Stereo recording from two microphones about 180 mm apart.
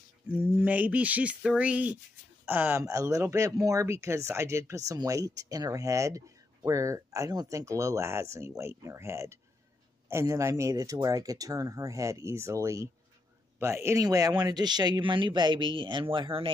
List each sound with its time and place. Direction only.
0.3 s speech: 10° right (ahead or behind); by 16.4 s 30° right (ahead or behind)